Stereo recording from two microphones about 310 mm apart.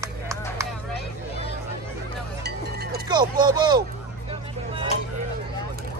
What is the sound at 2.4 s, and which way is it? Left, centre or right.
Music, right.